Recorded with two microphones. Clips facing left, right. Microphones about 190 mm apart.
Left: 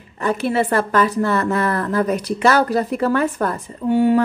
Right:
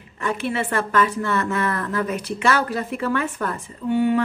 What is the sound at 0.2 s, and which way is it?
A woman's voice, 40° left (ahead or behind).